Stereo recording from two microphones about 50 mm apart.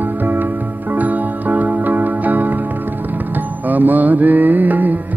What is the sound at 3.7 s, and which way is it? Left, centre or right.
Music, right.